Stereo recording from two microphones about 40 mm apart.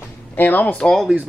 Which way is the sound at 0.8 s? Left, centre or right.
Centre.